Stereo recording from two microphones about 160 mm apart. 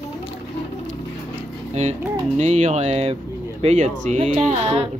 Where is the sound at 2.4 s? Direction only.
45° right (ahead or behind).